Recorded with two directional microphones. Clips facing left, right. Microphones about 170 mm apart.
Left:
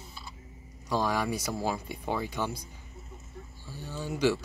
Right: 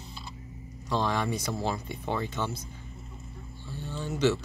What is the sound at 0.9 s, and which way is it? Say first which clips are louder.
Speech: even; 10° left (ahead or behind).